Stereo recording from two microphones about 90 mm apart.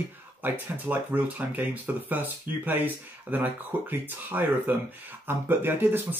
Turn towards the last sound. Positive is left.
turn(degrees=-20)  # may be behind; listen again after turning